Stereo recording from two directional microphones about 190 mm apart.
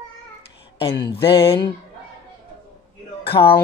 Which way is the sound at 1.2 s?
25° left (ahead or behind).